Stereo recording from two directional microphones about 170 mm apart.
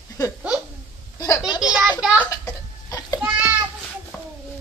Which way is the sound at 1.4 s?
5° right (ahead or behind).